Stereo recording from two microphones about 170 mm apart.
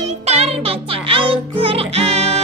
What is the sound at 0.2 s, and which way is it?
Music, 40° right (ahead or behind).